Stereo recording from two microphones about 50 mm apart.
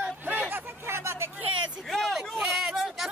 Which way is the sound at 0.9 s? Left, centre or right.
Right.